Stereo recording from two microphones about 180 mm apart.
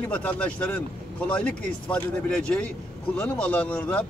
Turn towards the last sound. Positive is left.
turn(degrees=5)  # may be behind; listen again after turning